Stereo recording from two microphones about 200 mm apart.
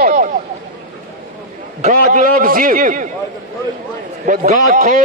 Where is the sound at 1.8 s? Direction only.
40° right (ahead or behind).